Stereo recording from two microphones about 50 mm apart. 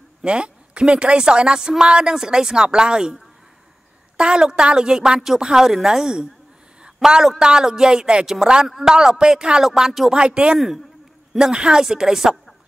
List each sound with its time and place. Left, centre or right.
0.2 s a woman's voice: right
4.2 s a woman's voice: centre
10.1 s a woman's voice: centre